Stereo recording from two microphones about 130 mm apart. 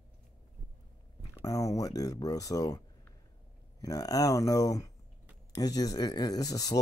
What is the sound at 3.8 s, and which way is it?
Speech, 30° left (ahead or behind).